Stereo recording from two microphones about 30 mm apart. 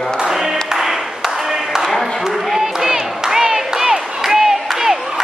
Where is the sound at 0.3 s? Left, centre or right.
Centre.